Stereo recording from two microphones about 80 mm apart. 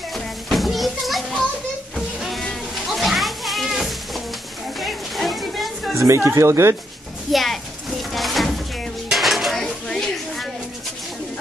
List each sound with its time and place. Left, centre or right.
0.1 s children playing: centre
2.0 s a sound: centre
5.9 s speech: right
7.3 s a child's voice: centre
8.1 s a sound: centre
9.1 s dishes: centre